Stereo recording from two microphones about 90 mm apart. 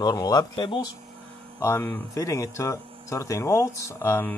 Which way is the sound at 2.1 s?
35° left (ahead or behind).